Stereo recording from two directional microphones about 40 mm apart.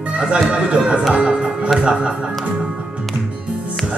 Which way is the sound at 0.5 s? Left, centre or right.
Right.